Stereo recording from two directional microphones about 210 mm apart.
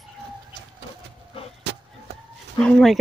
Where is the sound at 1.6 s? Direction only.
55° right (ahead or behind).